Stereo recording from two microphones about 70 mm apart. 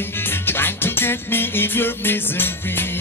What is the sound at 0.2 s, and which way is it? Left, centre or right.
Music, left.